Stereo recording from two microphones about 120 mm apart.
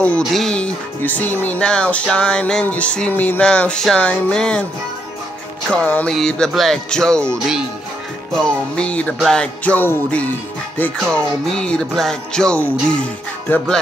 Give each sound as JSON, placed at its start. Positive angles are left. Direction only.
{"t": 0.3, "sound": "speech", "side_deg": 5}
{"t": 5.7, "sound": "speech", "side_deg": 10}